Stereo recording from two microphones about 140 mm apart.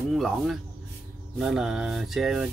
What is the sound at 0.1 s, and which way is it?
Speech, centre (ahead or behind).